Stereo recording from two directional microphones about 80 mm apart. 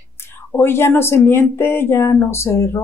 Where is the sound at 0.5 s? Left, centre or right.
Left.